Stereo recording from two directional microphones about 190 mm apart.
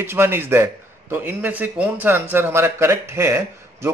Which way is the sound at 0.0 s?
10° right (ahead or behind).